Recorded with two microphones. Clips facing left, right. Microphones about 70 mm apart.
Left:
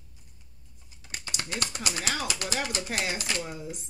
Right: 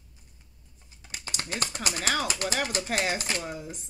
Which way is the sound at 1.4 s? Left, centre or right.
Right.